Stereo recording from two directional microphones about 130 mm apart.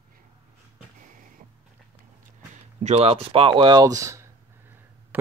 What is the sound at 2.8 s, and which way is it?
Speech, 50° right (ahead or behind).